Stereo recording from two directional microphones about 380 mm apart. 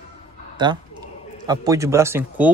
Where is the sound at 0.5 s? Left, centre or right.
Centre.